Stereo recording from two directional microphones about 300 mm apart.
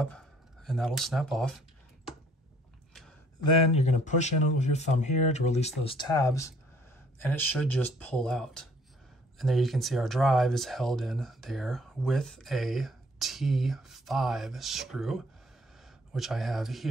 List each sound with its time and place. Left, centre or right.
0.0 s speech: centre
3.4 s speech: centre